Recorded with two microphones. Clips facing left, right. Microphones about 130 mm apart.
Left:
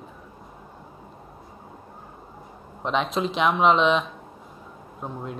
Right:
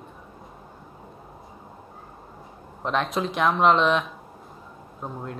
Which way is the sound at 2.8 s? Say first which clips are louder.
Left 1 dB; centre (ahead or behind).